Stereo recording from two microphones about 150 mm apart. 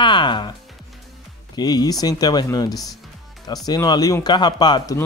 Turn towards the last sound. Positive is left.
turn(degrees=30)  # may be behind; listen again after turning